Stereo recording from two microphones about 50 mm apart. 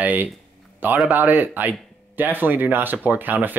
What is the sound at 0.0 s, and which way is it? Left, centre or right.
Speech, right.